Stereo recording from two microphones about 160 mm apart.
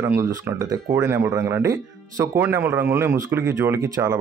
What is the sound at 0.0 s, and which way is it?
Speech, 15° right (ahead or behind).